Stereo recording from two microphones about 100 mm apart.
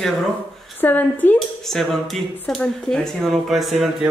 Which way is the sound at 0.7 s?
20° left (ahead or behind).